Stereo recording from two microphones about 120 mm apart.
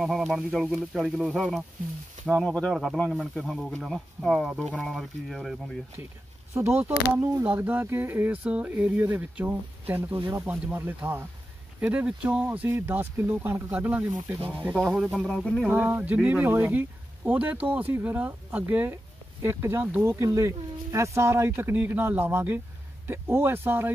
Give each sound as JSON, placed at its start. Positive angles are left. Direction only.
{"t": 0.0, "sound": "speech", "side_deg": 0}
{"t": 6.5, "sound": "speech", "side_deg": -20}
{"t": 15.2, "sound": "speech", "side_deg": 5}
{"t": 15.7, "sound": "speech", "side_deg": -15}